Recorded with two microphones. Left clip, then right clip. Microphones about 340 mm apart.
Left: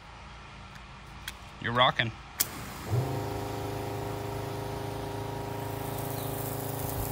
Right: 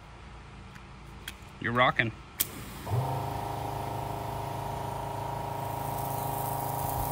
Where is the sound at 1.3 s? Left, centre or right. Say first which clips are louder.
Even; centre.